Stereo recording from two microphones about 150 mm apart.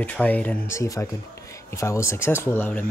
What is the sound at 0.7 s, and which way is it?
Speech, 20° left (ahead or behind).